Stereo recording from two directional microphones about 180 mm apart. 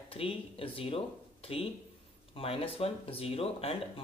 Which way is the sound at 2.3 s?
30° left (ahead or behind).